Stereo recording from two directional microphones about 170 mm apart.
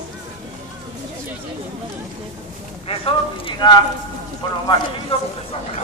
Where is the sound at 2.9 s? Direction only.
30° left (ahead or behind).